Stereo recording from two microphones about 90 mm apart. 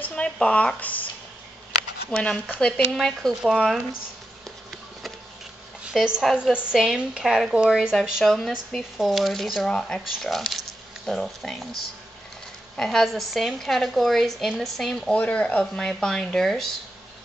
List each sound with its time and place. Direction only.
0.0 s speech: 15° left (ahead or behind)
2.0 s a woman's voice: 10° left (ahead or behind)
5.9 s a woman's voice: 5° right (ahead or behind)
15.1 s a woman's voice: 15° left (ahead or behind)